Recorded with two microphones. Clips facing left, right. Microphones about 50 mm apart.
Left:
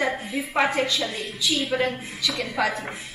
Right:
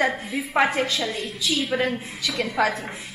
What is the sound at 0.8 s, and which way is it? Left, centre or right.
Speech, right.